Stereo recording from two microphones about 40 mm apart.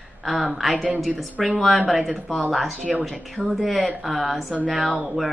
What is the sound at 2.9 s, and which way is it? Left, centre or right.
Speech, right.